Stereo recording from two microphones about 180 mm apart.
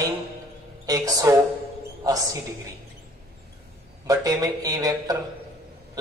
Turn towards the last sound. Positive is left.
turn(degrees=-20)  # may be behind; listen again after turning